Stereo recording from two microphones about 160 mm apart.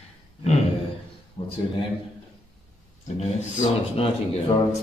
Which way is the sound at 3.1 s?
45° left (ahead or behind).